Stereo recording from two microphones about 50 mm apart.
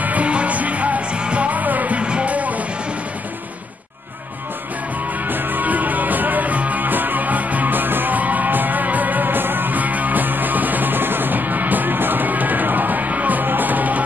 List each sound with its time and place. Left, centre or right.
0.0 s music: right
5.3 s music: right